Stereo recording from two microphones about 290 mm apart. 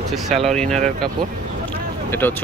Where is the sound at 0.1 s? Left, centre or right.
Centre.